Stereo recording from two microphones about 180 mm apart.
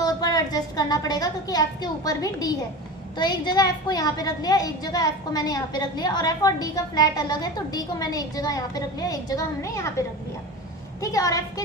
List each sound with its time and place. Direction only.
0.0 s a woman's voice: 20° left (ahead or behind)